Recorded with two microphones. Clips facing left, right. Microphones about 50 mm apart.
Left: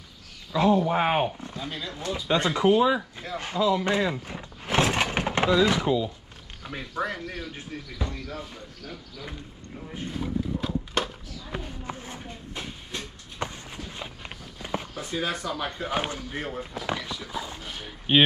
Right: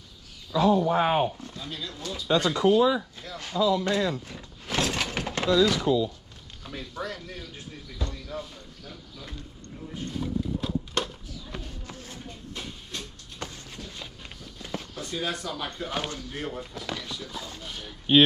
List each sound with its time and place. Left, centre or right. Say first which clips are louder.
0.5 s speech: even; centre
8.0 s speech: even; centre
10.0 s speech: left 1 dB; centre
11.5 s a sound: left 7 dB; left
16.5 s speech: left 4 dB; centre